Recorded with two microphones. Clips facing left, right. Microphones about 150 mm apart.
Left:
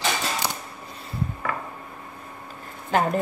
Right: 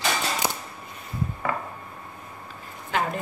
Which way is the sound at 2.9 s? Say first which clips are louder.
Left 5 dB; 45° left (ahead or behind).